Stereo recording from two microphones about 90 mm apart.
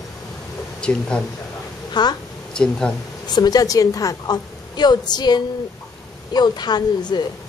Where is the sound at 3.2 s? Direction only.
50° left (ahead or behind).